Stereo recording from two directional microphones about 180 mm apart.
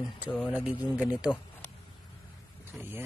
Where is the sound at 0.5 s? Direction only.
5° right (ahead or behind).